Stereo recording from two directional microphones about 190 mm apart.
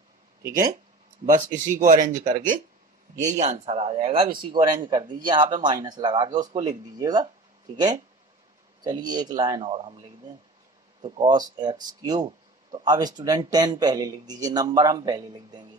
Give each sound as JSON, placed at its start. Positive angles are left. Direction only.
{"t": 1.2, "sound": "a man's voice", "side_deg": -45}
{"t": 11.0, "sound": "a man's voice", "side_deg": -25}